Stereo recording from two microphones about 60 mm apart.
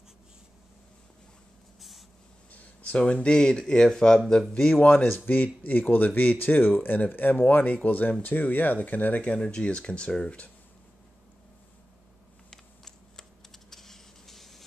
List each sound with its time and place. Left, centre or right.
1.8 s writing: centre
2.5 s speech: centre
4.7 s speech: left
9.3 s speech: centre
12.4 s typing: centre